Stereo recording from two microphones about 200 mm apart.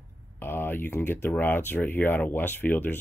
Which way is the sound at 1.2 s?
10° left (ahead or behind).